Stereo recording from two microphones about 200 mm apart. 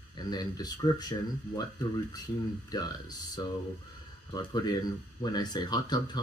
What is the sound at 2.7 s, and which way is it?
Speech, 20° left (ahead or behind).